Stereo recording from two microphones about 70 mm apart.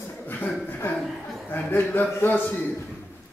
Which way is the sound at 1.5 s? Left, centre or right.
Left.